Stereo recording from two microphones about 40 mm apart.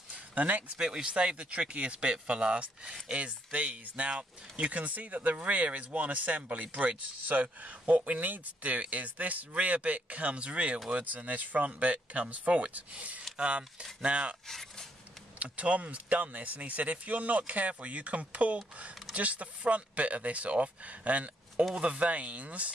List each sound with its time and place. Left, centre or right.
0.1 s a sound: right
0.7 s speech: right
4.6 s speech: right
11.1 s speech: right
14.5 s speech: centre
15.3 s speech: right